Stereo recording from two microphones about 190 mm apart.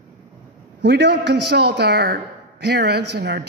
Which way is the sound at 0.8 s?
60° right (ahead or behind).